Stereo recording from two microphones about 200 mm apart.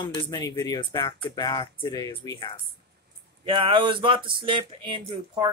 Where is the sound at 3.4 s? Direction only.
25° right (ahead or behind).